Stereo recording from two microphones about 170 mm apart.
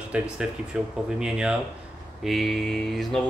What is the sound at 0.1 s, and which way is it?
Speech, 5° right (ahead or behind).